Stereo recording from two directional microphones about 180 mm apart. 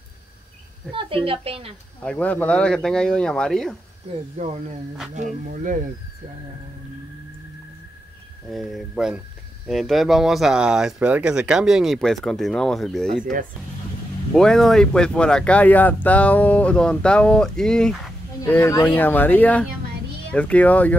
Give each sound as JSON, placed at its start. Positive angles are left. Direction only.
{"t": 0.9, "sound": "a woman's voice", "side_deg": -30}
{"t": 2.0, "sound": "speech", "side_deg": 10}
{"t": 4.4, "sound": "a woman's voice", "side_deg": -40}
{"t": 8.5, "sound": "speech", "side_deg": 0}
{"t": 13.2, "sound": "speech", "side_deg": -50}
{"t": 14.3, "sound": "speech", "side_deg": 5}
{"t": 18.4, "sound": "speech", "side_deg": 15}